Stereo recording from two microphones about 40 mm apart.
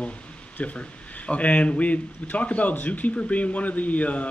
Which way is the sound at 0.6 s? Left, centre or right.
Left.